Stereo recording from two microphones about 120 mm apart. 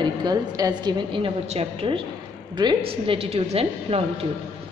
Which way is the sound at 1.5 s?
50° right (ahead or behind).